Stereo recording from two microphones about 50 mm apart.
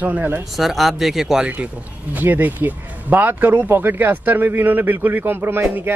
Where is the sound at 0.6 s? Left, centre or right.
Centre.